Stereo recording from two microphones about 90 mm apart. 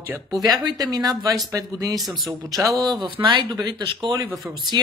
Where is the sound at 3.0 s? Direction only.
65° right (ahead or behind).